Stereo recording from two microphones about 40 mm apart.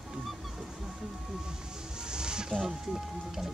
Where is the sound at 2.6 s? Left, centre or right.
Centre.